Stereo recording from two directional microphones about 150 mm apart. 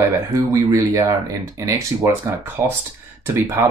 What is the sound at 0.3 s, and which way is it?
Speech, 20° right (ahead or behind).